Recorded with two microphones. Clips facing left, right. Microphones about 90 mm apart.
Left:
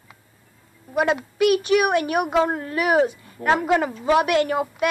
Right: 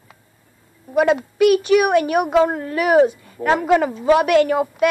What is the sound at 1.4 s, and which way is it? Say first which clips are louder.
Speech: right 4 dB; 30° right (ahead or behind).